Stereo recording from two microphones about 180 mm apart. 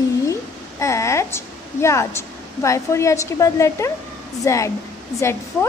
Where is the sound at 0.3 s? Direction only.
15° left (ahead or behind).